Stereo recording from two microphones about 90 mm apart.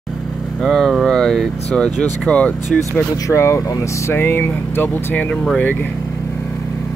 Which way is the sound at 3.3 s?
30° left (ahead or behind).